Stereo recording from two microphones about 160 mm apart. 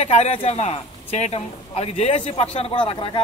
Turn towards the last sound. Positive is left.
turn(degrees=35)  # may be behind; listen again after turning